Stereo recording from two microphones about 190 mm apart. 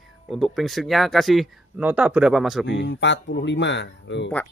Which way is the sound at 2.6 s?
70° left (ahead or behind).